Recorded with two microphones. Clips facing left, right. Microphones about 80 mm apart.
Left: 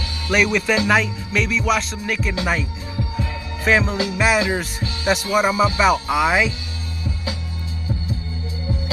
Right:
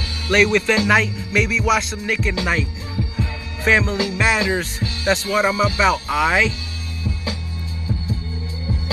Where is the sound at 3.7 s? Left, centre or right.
Centre.